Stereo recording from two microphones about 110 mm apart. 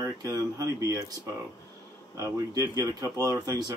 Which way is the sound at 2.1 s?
30° right (ahead or behind).